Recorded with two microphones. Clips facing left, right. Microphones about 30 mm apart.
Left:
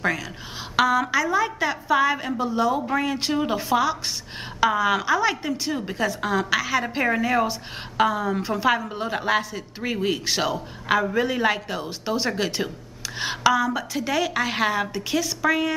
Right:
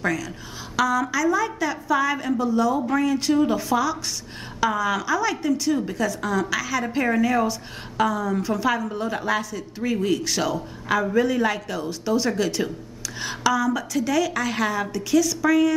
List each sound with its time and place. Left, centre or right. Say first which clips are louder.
0.0 s a woman's voice: even; left